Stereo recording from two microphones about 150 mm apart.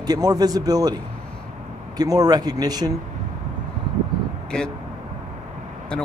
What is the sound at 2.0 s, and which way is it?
Speech, 25° right (ahead or behind).